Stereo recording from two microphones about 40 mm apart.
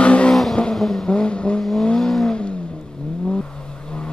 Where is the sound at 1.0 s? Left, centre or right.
Left.